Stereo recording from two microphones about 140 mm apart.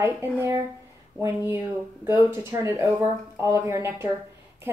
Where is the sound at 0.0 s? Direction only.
15° right (ahead or behind).